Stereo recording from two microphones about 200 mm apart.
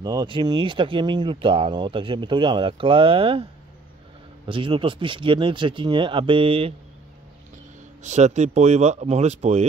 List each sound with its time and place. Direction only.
0.0 s speech: 20° right (ahead or behind)
4.5 s speech: 25° right (ahead or behind)
8.0 s speech: 35° right (ahead or behind)